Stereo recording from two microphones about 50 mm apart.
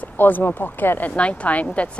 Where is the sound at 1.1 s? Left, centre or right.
Left.